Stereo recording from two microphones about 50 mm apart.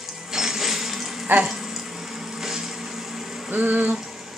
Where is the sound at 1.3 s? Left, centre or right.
Right.